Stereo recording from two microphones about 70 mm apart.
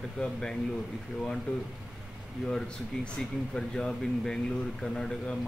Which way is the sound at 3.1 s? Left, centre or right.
Centre.